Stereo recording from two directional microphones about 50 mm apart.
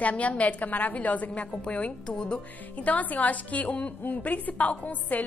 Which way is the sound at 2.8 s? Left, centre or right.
Left.